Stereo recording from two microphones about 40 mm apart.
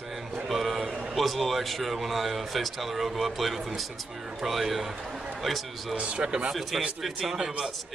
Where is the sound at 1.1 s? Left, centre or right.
Centre.